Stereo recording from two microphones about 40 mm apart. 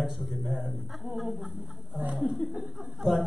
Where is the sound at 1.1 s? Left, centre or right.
Right.